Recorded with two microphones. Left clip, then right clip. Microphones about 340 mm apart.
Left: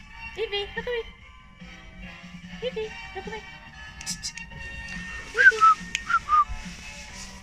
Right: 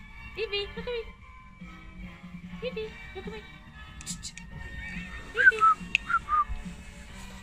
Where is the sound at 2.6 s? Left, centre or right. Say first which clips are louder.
Left 4 dB; left.